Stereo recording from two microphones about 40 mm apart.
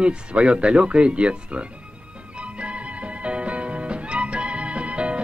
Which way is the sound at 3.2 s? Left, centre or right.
Right.